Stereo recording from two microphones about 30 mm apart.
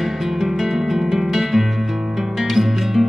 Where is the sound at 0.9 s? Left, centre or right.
Centre.